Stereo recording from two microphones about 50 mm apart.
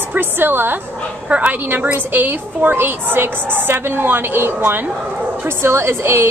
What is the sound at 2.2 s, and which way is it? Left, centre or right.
A woman's voice, right.